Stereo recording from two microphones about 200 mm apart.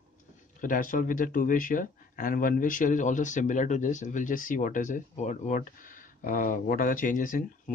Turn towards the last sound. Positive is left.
turn(degrees=45)  # may be behind; listen again after turning